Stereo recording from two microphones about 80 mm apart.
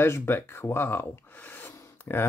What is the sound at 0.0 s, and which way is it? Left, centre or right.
Speech, left.